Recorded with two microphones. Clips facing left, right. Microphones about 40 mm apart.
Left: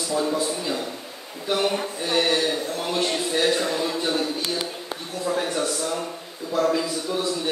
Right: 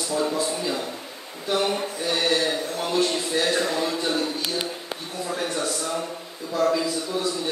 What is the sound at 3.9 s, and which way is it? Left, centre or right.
Speech, centre.